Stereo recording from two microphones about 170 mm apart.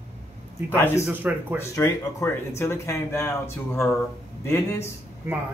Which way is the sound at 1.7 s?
15° left (ahead or behind).